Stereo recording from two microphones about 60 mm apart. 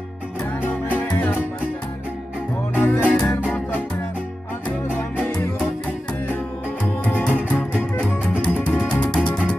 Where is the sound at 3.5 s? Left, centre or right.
Left.